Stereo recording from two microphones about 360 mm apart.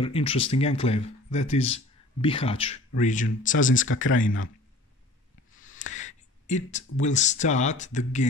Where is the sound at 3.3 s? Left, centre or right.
Left.